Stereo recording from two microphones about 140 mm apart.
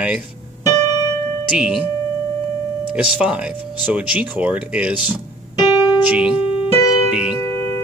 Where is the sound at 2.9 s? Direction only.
5° right (ahead or behind).